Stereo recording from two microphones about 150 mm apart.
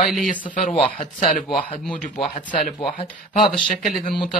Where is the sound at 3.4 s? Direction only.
Centre (ahead or behind).